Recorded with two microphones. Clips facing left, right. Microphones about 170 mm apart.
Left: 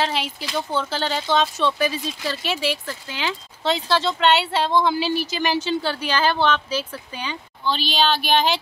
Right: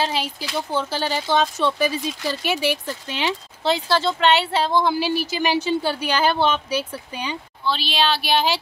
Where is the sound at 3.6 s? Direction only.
5° right (ahead or behind).